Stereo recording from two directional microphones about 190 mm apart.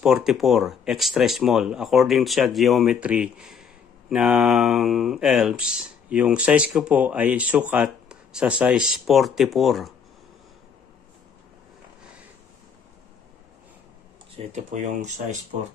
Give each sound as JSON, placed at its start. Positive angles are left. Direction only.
{"t": 0.0, "sound": "speech", "side_deg": -5}
{"t": 14.3, "sound": "speech", "side_deg": -35}